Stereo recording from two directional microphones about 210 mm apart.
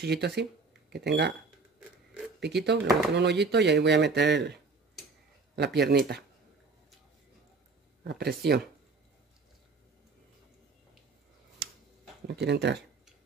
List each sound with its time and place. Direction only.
0.0 s speech: 50° right (ahead or behind)
2.4 s speech: 50° right (ahead or behind)
5.6 s speech: 55° right (ahead or behind)
8.0 s speech: 50° right (ahead or behind)
12.3 s speech: 55° right (ahead or behind)